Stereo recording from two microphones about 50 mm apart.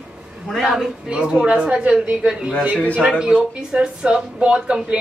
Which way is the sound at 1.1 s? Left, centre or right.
Right.